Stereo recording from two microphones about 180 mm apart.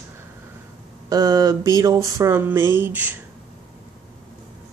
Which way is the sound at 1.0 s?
20° right (ahead or behind).